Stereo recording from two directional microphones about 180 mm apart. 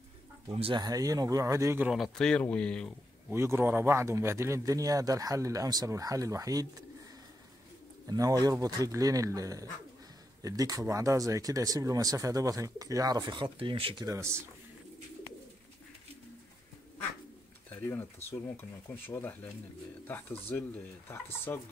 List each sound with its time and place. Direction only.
0.5 s speech: 30° right (ahead or behind); by 1.9 s 15° right (ahead or behind)
1.9 s speech: centre (ahead or behind)
3.3 s speech: 15° right (ahead or behind)
8.1 s speech: 20° right (ahead or behind)
17.6 s pigeon: 10° left (ahead or behind)
18.6 s speech: 10° left (ahead or behind)